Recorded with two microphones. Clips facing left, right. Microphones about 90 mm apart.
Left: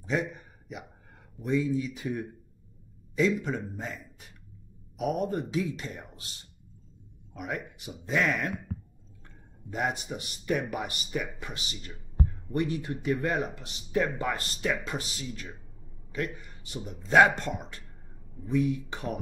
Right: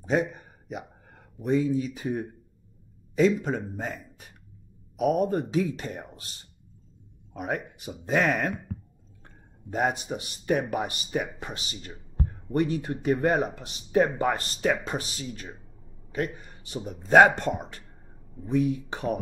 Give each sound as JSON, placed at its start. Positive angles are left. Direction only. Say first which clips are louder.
{"t": 0.4, "sound": "a sound", "louder": "right 5 dB", "side_deg": -40}
{"t": 1.0, "sound": "speech", "louder": "right 5 dB", "side_deg": -40}
{"t": 5.2, "sound": "speech", "louder": "right 4 dB", "side_deg": -35}
{"t": 7.3, "sound": "speech", "louder": "right 4 dB", "side_deg": -40}
{"t": 16.3, "sound": "speech", "louder": "right 4 dB", "side_deg": -35}
{"t": 17.4, "sound": "speech", "louder": "right 5 dB", "side_deg": -30}